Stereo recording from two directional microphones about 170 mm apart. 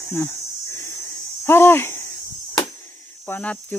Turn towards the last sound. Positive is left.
turn(degrees=10)  # may be behind; listen again after turning